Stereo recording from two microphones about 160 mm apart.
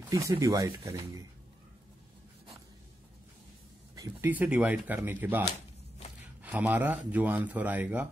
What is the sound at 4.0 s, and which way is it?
Speech, 15° right (ahead or behind).